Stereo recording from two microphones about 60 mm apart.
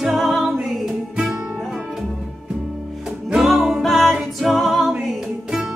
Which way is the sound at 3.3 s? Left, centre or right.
Centre.